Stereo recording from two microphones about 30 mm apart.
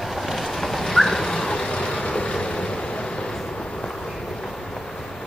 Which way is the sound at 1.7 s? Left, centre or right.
Left.